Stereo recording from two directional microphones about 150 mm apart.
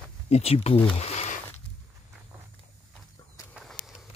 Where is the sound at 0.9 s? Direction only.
45° left (ahead or behind).